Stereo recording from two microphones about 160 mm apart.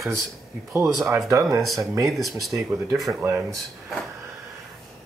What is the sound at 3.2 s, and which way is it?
Speech, 15° right (ahead or behind).